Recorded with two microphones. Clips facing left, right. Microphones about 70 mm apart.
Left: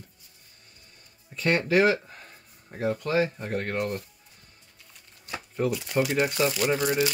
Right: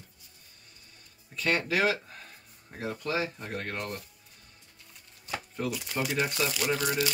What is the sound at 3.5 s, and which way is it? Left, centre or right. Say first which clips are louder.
Speech: left 6 dB; left.